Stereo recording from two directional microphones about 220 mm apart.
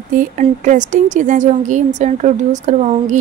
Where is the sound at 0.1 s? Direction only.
35° right (ahead or behind).